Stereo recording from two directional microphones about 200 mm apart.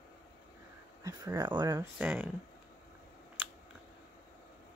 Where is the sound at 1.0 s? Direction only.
15° right (ahead or behind).